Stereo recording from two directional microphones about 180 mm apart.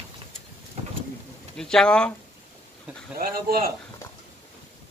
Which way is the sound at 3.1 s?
55° right (ahead or behind).